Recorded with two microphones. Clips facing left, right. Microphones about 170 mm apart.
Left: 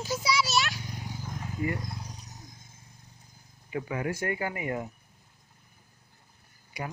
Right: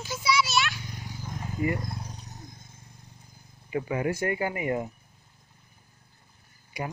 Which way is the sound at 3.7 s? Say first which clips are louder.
Right 4 dB; 20° right (ahead or behind).